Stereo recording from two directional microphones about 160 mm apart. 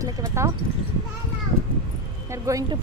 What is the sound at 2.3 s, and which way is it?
Speech, 20° right (ahead or behind).